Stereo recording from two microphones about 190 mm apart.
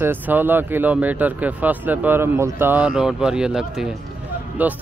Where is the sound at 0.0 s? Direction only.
10° right (ahead or behind).